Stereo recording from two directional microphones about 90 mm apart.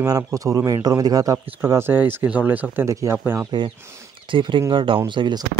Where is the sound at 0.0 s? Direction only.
40° right (ahead or behind).